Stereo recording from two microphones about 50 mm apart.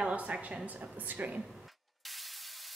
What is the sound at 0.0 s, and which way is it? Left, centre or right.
A woman's voice, right.